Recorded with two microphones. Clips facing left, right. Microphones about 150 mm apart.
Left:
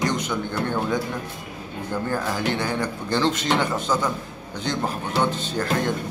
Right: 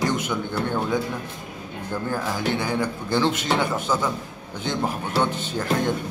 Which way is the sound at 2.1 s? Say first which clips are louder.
Even; 10° right (ahead or behind).